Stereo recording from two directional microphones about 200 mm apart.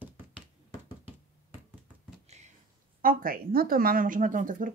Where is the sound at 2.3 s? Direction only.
35° right (ahead or behind).